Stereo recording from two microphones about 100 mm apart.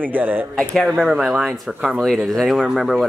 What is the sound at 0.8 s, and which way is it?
Speech, 5° right (ahead or behind).